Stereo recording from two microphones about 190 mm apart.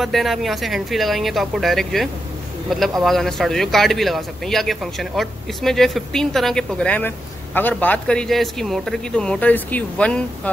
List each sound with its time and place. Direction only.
0.0 s a man's voice: centre (ahead or behind)